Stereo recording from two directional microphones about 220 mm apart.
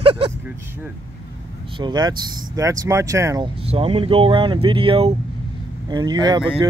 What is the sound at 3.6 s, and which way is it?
Speech, 25° right (ahead or behind).